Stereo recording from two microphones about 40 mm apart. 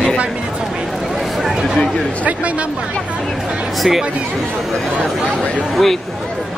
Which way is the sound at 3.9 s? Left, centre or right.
Centre.